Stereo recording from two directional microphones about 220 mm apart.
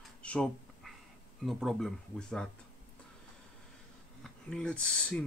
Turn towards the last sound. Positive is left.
turn(degrees=5)  # may be behind; listen again after turning